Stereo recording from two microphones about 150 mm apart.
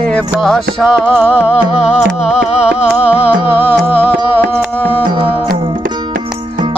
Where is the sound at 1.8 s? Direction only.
45° left (ahead or behind).